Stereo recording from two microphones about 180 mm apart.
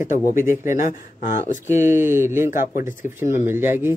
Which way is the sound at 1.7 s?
15° right (ahead or behind).